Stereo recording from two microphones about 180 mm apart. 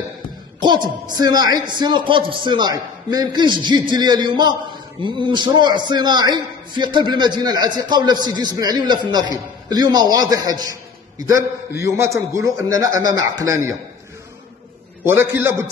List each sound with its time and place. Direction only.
0.6 s a man's voice: 25° right (ahead or behind)
15.0 s a man's voice: 15° right (ahead or behind)